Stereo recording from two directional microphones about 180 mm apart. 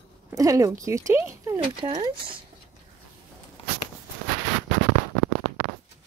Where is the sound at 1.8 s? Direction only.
30° right (ahead or behind).